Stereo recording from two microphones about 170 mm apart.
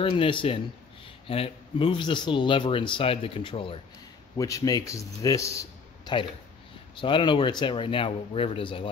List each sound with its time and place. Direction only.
0.0 s speech: 30° left (ahead or behind)
4.4 s speech: 20° left (ahead or behind)
7.0 s speech: 30° left (ahead or behind)